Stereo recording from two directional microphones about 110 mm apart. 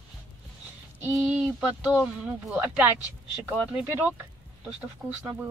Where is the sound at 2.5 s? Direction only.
15° right (ahead or behind).